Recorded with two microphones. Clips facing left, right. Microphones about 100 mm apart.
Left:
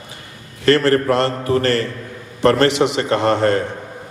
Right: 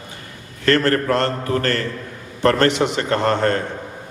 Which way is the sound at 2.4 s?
40° right (ahead or behind).